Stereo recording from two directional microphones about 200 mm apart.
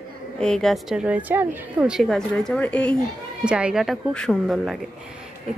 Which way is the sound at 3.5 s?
5° right (ahead or behind).